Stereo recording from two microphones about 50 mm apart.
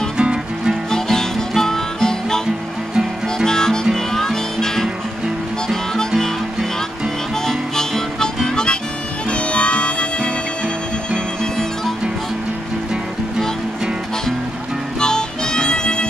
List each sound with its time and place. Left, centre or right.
0.2 s music: centre
0.9 s music: centre
3.4 s music: centre
7.4 s music: centre
9.3 s music: left
15.0 s music: centre